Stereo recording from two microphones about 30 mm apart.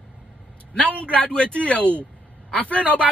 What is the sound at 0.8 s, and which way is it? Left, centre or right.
Speech, right.